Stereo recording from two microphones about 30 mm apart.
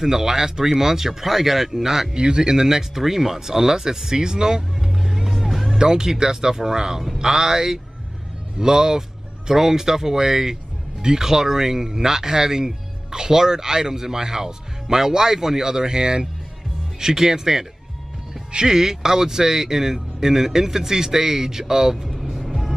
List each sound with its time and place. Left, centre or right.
0.0 s speech: centre
2.1 s speech: right; by 5.8 s centre
5.8 s speech: right
18.7 s speech: centre